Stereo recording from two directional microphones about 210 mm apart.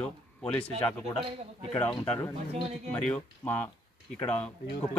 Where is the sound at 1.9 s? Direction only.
10° left (ahead or behind).